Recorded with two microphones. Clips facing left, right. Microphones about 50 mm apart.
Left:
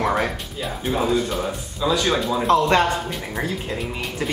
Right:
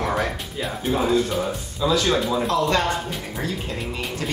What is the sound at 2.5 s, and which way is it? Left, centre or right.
Speech, left.